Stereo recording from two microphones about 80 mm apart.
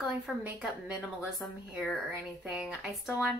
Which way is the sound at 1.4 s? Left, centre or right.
Centre.